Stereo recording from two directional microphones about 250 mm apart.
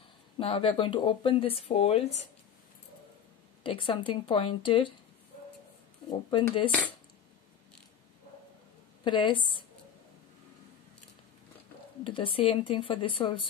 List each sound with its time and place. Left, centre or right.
0.4 s speech: left
3.6 s speech: centre
6.0 s speech: left
9.0 s speech: centre
12.0 s speech: left